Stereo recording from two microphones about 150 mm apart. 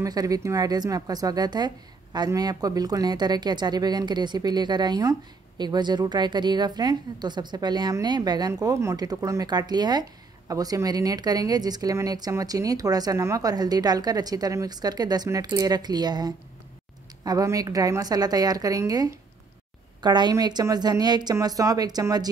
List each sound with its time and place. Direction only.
0.0 s speech: 25° right (ahead or behind)